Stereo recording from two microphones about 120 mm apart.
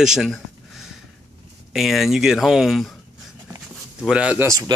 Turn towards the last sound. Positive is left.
turn(degrees=-25)  # may be behind; listen again after turning